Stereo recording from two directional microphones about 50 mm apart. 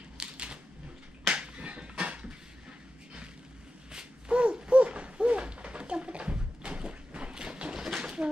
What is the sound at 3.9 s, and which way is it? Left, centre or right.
Mechanisms, right.